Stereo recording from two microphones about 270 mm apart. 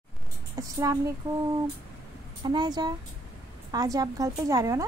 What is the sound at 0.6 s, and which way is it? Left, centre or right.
Speech, centre.